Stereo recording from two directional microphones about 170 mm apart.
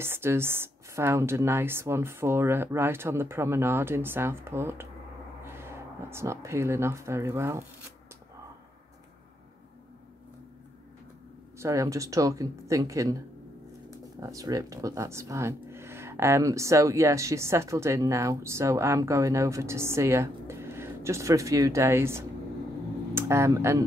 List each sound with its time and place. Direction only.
0.0 s speech: 15° right (ahead or behind)
11.5 s speech: 15° right (ahead or behind)